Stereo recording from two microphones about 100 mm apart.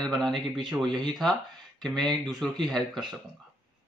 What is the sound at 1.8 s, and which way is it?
Speech, 5° left (ahead or behind).